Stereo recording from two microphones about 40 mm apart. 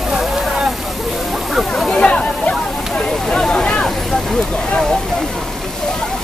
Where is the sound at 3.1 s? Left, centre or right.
Centre.